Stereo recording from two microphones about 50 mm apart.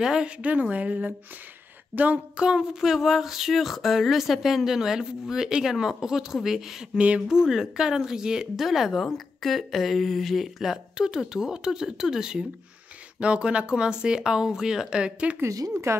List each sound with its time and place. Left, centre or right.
0.0 s speech: centre
0.4 s speech: right
2.3 s speech: centre
7.0 s speech: right
7.2 s speech: centre
11.0 s speech: centre
15.9 s speech: right